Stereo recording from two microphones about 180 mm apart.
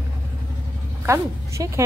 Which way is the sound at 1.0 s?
15° right (ahead or behind).